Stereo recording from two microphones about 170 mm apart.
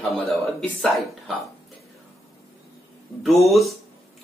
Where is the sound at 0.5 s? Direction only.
5° left (ahead or behind).